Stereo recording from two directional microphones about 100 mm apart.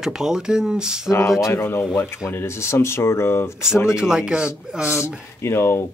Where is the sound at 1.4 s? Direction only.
25° left (ahead or behind).